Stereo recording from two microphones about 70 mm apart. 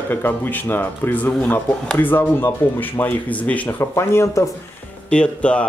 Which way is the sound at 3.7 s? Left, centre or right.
Left.